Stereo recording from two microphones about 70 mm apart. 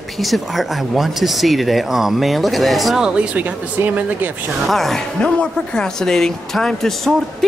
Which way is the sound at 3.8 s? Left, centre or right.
Right.